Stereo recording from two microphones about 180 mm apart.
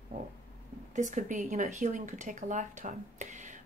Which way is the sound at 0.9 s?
45° right (ahead or behind).